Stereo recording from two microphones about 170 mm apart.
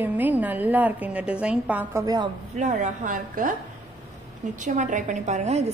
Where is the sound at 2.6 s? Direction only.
45° right (ahead or behind).